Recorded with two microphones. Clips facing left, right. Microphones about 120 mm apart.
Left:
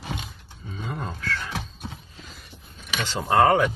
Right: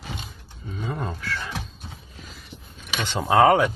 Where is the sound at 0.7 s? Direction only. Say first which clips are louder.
Right 3 dB; 10° right (ahead or behind).